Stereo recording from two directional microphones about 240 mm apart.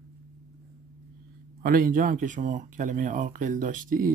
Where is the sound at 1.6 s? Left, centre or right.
Right.